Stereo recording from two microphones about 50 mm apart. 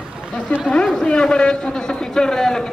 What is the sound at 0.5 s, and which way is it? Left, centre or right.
Speech, left.